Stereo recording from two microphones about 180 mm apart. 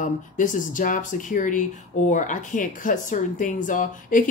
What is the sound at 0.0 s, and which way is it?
Speech, 45° left (ahead or behind).